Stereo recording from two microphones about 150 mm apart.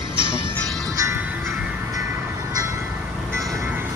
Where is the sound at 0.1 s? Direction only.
35° right (ahead or behind).